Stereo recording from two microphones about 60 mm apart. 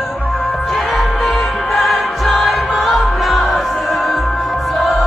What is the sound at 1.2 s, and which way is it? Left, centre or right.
Music, centre.